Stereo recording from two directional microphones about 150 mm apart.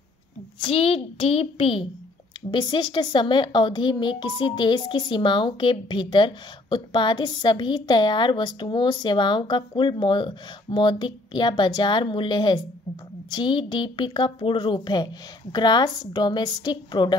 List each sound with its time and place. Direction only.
0.6 s a woman's voice: 40° left (ahead or behind)